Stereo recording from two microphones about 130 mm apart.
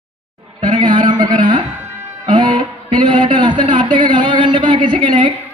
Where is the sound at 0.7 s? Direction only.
35° right (ahead or behind).